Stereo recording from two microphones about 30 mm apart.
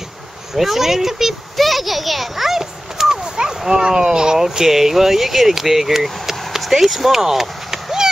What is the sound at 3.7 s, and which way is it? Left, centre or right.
Speech, right.